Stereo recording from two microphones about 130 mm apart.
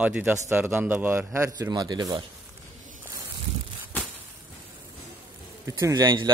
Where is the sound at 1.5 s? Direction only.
30° right (ahead or behind).